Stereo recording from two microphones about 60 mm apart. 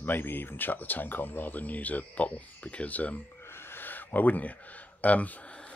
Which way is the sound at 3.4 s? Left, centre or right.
Left.